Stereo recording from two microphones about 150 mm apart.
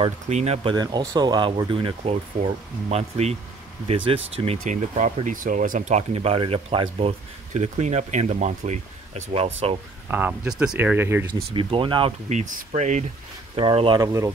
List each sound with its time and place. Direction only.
0.3 s speech: 45° right (ahead or behind)
0.7 s speech: 25° right (ahead or behind)
10.0 s speech: 10° right (ahead or behind)
11.5 s speech: 35° right (ahead or behind)
12.3 s speech: 55° right (ahead or behind)
13.6 s speech: 35° right (ahead or behind)
14.0 s speech: 20° right (ahead or behind)